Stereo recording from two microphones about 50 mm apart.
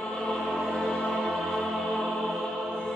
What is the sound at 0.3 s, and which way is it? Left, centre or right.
Music, centre.